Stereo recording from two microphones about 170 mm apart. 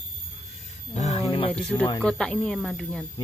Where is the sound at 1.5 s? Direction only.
5° left (ahead or behind).